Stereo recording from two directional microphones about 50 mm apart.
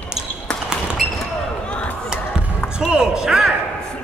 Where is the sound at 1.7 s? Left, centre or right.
Left.